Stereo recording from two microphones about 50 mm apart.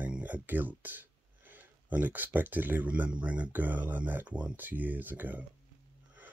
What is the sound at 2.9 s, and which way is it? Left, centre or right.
Speech, right.